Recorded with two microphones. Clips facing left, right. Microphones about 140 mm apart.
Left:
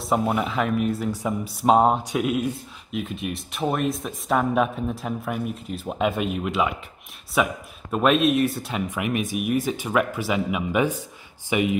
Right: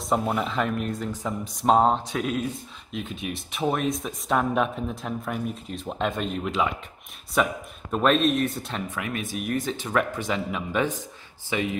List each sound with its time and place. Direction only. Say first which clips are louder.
0.0 s speech: left 2 dB; 5° left (ahead or behind)